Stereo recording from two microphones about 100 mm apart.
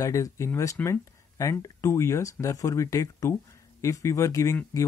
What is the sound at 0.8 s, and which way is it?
Speech, 15° left (ahead or behind).